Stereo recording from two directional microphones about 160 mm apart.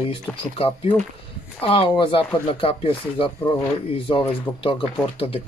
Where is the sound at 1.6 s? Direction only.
35° left (ahead or behind).